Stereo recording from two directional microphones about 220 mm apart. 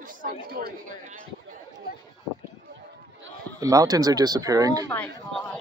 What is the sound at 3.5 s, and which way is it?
Speech, 15° right (ahead or behind).